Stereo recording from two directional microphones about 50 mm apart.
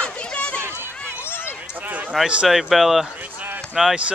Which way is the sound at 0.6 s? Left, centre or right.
Right.